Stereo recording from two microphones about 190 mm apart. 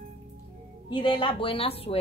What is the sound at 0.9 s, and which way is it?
A woman's voice, 25° left (ahead or behind).